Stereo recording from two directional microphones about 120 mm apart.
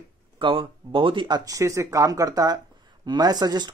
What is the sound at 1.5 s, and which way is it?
Speech, 25° right (ahead or behind).